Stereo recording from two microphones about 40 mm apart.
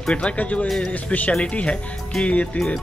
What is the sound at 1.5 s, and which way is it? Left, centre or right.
Speech, left.